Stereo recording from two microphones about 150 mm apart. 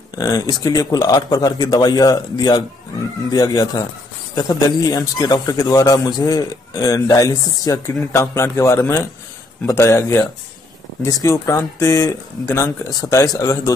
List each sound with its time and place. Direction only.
0.2 s speech: 20° left (ahead or behind)